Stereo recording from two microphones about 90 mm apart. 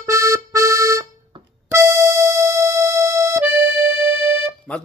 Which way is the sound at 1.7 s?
35° right (ahead or behind).